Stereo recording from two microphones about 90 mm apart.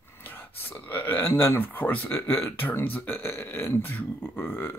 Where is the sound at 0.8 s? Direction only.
20° left (ahead or behind).